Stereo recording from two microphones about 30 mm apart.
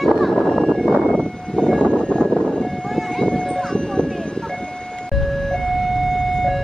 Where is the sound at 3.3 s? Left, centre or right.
Left.